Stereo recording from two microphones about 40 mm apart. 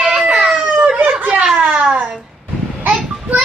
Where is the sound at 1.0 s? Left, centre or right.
Right.